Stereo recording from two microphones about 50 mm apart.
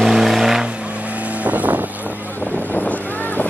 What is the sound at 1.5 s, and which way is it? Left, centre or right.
Vehicle, right.